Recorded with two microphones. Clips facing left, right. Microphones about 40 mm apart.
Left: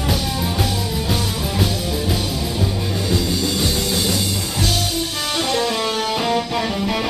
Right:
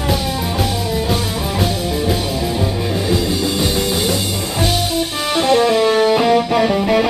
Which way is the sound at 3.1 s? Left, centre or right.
Centre.